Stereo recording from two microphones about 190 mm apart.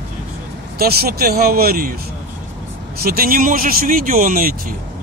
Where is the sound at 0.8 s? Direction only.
55° right (ahead or behind).